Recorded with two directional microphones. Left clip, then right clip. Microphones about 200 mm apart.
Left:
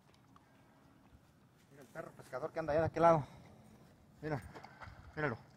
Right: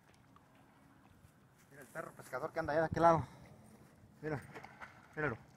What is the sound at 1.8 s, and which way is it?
Speech, 5° right (ahead or behind).